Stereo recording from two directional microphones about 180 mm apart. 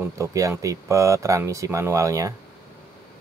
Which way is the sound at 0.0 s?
15° right (ahead or behind).